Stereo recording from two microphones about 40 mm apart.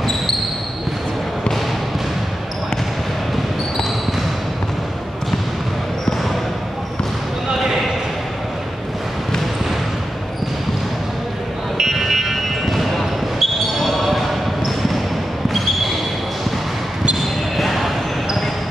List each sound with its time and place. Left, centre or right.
7.4 s basketball bounce: centre
11.8 s buzzer: centre
12.6 s basketball bounce: centre
17.6 s basketball bounce: centre